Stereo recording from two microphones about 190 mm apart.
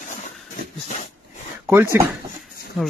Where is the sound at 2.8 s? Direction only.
Centre (ahead or behind).